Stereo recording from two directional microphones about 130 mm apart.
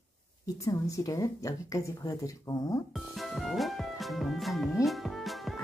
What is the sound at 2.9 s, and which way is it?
Music, centre (ahead or behind).